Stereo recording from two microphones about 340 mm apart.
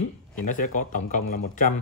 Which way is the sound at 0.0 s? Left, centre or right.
Left.